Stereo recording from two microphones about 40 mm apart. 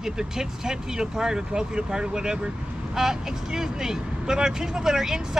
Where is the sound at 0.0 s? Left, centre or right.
Centre.